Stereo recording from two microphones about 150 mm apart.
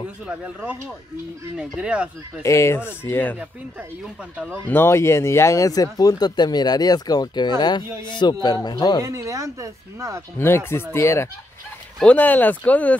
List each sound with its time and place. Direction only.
0.2 s speech: 10° right (ahead or behind)
1.8 s speech: 5° right (ahead or behind)
2.4 s speech: 20° left (ahead or behind)
3.3 s speech: 10° right (ahead or behind)
4.6 s speech: 15° left (ahead or behind)
9.0 s speech: 20° right (ahead or behind)
10.3 s speech: 15° left (ahead or behind)